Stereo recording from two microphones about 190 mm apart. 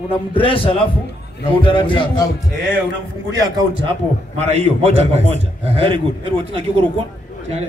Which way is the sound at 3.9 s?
35° right (ahead or behind).